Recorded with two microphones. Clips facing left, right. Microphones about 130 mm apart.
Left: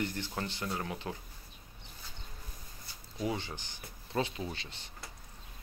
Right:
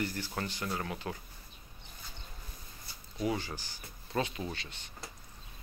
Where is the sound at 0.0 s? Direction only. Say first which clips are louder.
Even; 20° left (ahead or behind).